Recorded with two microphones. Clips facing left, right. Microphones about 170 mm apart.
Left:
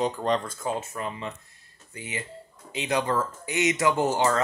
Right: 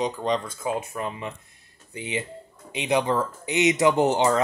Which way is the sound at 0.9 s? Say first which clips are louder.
Right 2 dB; 20° right (ahead or behind).